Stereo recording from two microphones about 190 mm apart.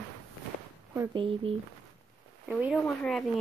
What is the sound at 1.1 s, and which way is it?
Speech, 30° right (ahead or behind).